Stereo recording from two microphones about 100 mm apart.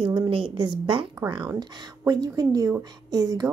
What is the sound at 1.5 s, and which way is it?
A woman's voice, 45° right (ahead or behind).